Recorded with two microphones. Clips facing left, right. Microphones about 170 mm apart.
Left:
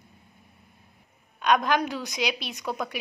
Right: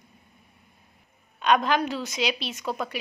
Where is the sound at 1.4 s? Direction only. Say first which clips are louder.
Right 1 dB; 10° left (ahead or behind).